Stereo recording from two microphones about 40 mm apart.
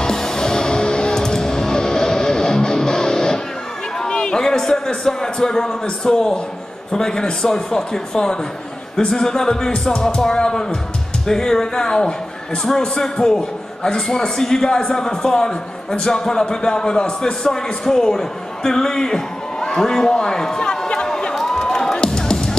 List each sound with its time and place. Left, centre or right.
0.0 s music: centre
4.0 s a sound: left
6.9 s a man's voice: centre
21.4 s music: centre